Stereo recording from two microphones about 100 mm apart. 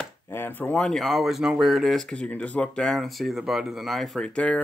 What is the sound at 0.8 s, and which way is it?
Speech, 5° left (ahead or behind).